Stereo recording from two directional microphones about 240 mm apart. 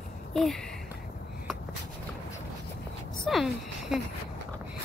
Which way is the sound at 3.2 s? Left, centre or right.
Centre.